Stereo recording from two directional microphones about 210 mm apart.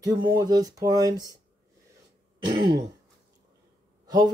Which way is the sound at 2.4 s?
20° right (ahead or behind).